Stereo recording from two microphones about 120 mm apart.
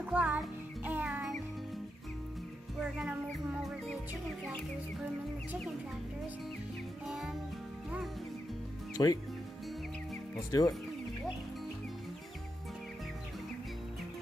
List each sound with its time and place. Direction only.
0.0 s music: 10° right (ahead or behind)
2.8 s music: 10° right (ahead or behind)
7.1 s music: 5° right (ahead or behind)
8.9 s speech: 30° left (ahead or behind)
10.5 s speech: 30° left (ahead or behind)